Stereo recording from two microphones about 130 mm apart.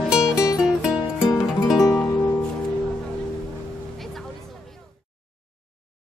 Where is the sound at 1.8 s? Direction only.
20° left (ahead or behind).